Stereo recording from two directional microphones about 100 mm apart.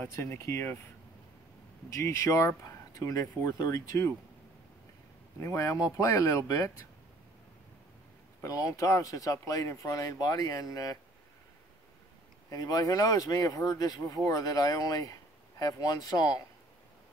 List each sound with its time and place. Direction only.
0.0 s speech: 25° left (ahead or behind)
1.9 s speech: 30° left (ahead or behind)
5.4 s speech: 30° left (ahead or behind)
8.4 s speech: 35° left (ahead or behind)
12.4 s speech: 40° left (ahead or behind)